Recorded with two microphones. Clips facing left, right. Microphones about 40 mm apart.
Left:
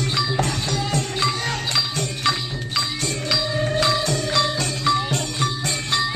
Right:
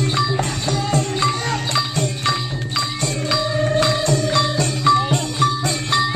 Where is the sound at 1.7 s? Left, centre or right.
Centre.